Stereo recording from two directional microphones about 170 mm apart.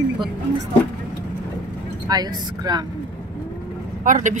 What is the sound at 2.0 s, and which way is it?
Speech, 25° right (ahead or behind).